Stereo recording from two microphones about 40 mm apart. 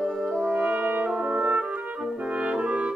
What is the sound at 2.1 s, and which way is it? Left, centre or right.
Brass instrument, right.